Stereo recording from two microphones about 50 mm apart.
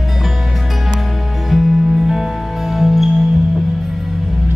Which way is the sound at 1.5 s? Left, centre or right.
Centre.